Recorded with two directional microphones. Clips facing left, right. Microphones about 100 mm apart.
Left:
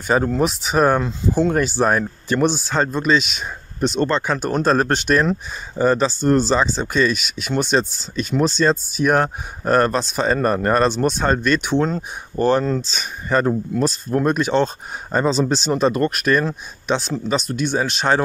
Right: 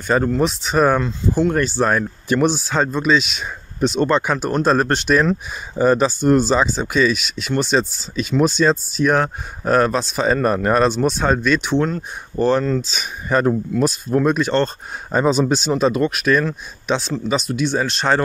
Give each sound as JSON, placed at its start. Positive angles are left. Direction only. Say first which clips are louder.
{"t": 0.0, "sound": "speech", "louder": "right 1 dB", "side_deg": 5}
{"t": 2.2, "sound": "speech", "louder": "right 2 dB", "side_deg": -5}
{"t": 5.8, "sound": "speech", "louder": "right 2 dB", "side_deg": -10}
{"t": 12.8, "sound": "speech", "louder": "right 1 dB", "side_deg": -5}